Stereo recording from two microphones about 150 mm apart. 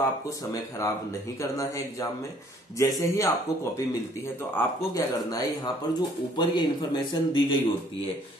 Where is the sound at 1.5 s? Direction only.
20° left (ahead or behind).